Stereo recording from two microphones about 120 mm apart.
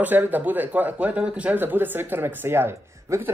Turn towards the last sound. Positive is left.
turn(degrees=-25)  # may be behind; listen again after turning